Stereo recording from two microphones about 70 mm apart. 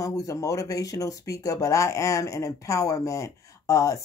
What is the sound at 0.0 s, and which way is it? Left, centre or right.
Speech, left.